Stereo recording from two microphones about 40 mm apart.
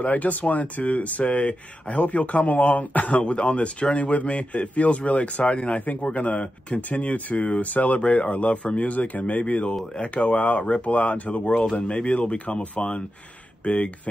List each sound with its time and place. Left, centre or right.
0.0 s speech: left
5.8 s a man's voice: left